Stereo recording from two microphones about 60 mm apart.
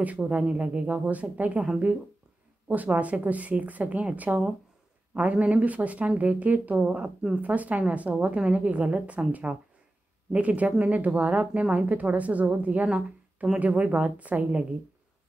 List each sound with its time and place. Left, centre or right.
0.0 s a woman's voice: right
2.7 s a woman's voice: right